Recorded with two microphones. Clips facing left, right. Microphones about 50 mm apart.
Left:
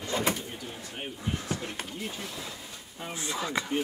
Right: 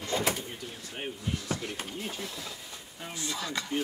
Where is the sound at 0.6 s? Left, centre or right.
Left.